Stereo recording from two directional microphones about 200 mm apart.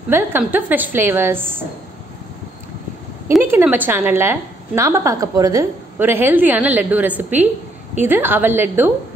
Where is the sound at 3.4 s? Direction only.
10° right (ahead or behind).